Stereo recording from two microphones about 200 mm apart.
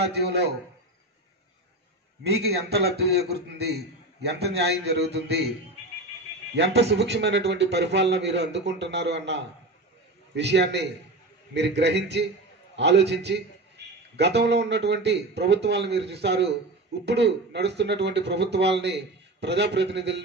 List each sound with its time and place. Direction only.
0.0 s a man's voice: 55° right (ahead or behind)
2.2 s a man's voice: 55° right (ahead or behind)
6.5 s a man's voice: 55° right (ahead or behind)
13.8 s a sound: 55° right (ahead or behind)
14.1 s a man's voice: 60° right (ahead or behind)